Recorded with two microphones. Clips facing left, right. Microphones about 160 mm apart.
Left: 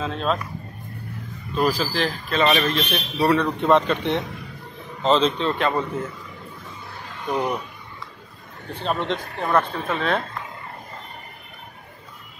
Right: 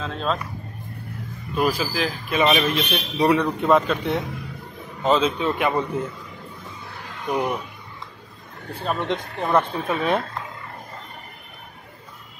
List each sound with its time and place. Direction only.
0.0 s speech: 5° left (ahead or behind)
1.5 s a man's voice: 10° right (ahead or behind)
7.2 s a man's voice: 10° right (ahead or behind)
9.0 s a man's voice: 15° right (ahead or behind)